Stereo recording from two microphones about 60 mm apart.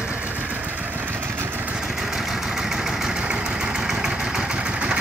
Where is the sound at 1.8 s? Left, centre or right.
Centre.